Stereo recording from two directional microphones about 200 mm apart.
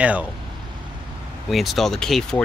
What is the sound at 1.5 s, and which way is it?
Speech, centre (ahead or behind).